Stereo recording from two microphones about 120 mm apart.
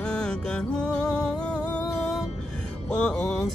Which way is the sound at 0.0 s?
5° left (ahead or behind).